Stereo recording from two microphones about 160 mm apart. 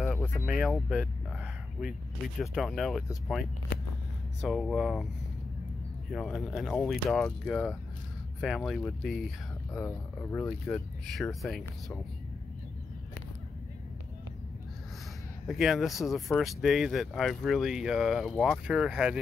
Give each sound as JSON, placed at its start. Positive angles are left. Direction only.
{"t": 0.0, "sound": "a sound", "side_deg": 5}
{"t": 2.4, "sound": "speech", "side_deg": 0}
{"t": 6.1, "sound": "speech", "side_deg": 0}
{"t": 9.8, "sound": "speech", "side_deg": 15}
{"t": 10.7, "sound": "speech", "side_deg": 0}
{"t": 15.4, "sound": "speech", "side_deg": 0}